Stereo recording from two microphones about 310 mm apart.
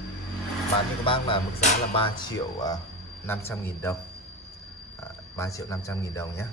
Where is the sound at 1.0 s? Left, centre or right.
Centre.